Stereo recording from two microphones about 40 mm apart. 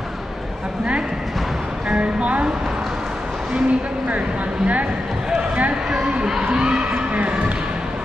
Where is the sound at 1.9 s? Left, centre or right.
Right.